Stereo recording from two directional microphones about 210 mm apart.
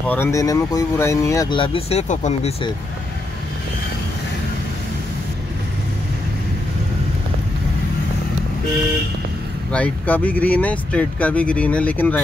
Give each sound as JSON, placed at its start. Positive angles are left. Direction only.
{"t": 0.1, "sound": "speech", "side_deg": 15}
{"t": 9.7, "sound": "speech", "side_deg": 5}